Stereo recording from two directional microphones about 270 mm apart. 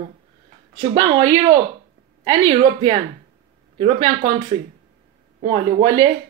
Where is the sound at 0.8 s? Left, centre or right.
Centre.